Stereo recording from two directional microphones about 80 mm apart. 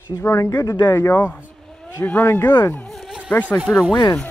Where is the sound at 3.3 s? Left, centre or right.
Centre.